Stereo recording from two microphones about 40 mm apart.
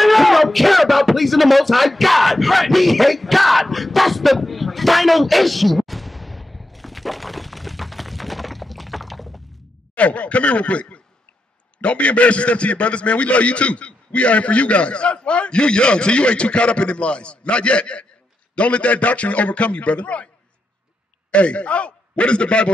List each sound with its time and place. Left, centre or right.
0.0 s a sound: centre
9.9 s a man's voice: left
21.3 s a man's voice: left